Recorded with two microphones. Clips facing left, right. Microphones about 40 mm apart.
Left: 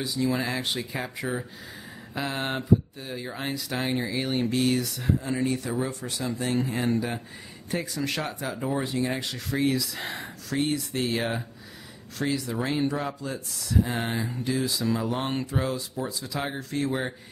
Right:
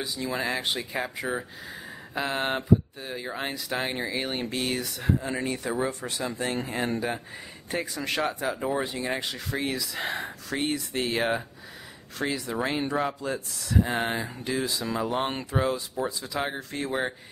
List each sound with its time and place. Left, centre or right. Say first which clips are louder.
0.0 s speech: left 3 dB; centre